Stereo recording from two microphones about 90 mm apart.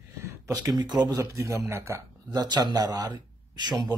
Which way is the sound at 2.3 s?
50° right (ahead or behind).